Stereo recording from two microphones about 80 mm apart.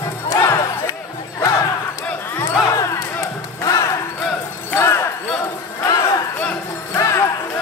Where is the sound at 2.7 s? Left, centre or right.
Left.